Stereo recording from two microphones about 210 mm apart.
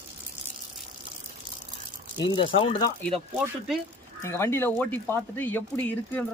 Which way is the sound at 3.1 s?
Centre (ahead or behind).